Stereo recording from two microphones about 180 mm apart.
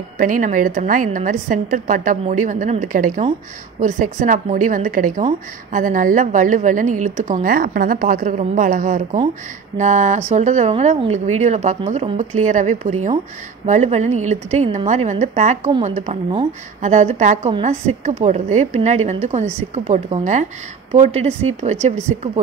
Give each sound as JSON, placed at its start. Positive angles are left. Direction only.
{"t": 0.2, "sound": "a woman's voice", "side_deg": -50}